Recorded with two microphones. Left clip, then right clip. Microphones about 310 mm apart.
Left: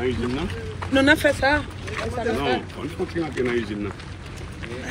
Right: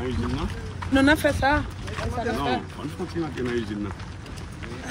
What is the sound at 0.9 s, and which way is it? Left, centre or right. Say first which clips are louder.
Speech: left 2 dB; right.